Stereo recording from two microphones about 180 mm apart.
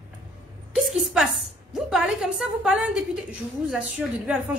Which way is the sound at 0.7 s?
Centre (ahead or behind).